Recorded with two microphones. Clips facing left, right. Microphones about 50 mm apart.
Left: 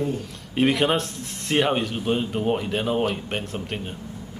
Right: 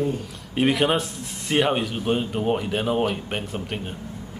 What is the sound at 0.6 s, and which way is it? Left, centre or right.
Speech, centre.